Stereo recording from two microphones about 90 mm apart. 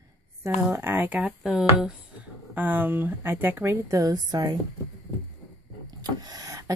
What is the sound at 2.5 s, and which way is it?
Speech, 20° right (ahead or behind).